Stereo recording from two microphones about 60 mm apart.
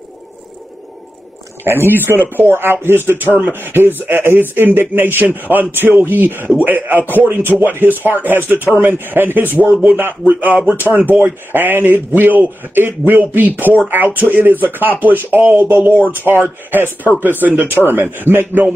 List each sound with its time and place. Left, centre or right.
1.6 s speech: right
3.3 s speech: right